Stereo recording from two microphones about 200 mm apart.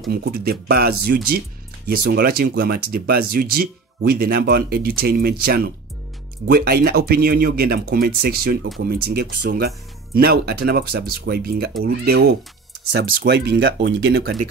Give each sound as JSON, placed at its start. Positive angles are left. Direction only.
{"t": 0.1, "sound": "speech", "side_deg": -50}